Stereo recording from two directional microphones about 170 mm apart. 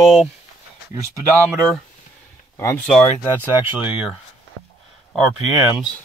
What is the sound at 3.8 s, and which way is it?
Speech, 5° right (ahead or behind).